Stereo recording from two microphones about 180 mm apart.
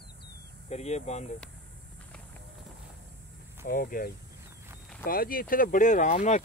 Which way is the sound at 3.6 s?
50° left (ahead or behind).